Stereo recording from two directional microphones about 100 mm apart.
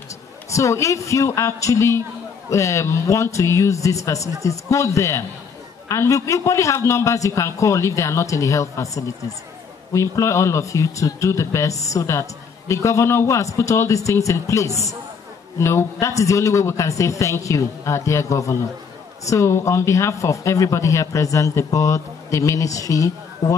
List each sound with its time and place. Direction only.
0.5 s a man's voice: 30° left (ahead or behind)